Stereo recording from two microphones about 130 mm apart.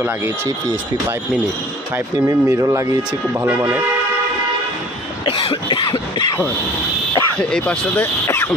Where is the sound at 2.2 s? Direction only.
25° right (ahead or behind).